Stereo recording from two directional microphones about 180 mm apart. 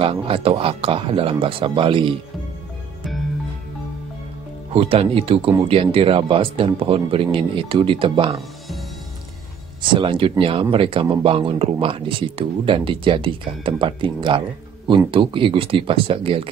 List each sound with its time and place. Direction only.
0.0 s speech: 30° right (ahead or behind)
4.7 s speech: 30° right (ahead or behind)
9.9 s speech: 30° right (ahead or behind)